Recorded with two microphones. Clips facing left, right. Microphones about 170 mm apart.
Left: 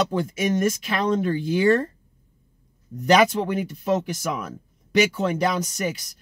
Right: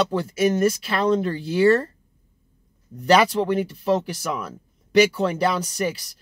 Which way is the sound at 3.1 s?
35° right (ahead or behind).